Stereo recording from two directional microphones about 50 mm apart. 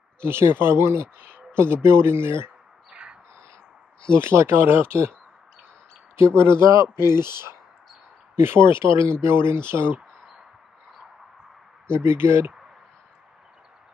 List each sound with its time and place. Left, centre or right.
0.2 s speech: right
2.9 s squawk: right
4.1 s speech: right
6.1 s speech: right
11.9 s speech: right